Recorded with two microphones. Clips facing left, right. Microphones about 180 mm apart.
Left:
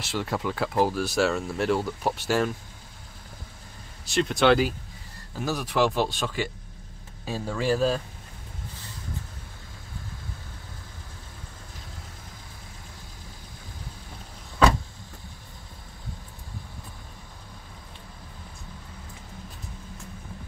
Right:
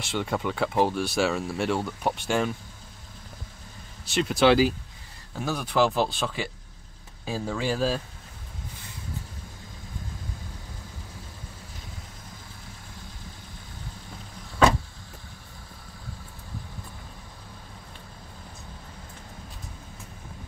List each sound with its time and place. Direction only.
0.0 s speech: centre (ahead or behind)
4.0 s speech: centre (ahead or behind)